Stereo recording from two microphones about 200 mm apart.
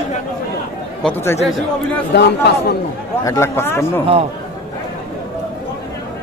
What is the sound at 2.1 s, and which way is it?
Speech, 55° left (ahead or behind).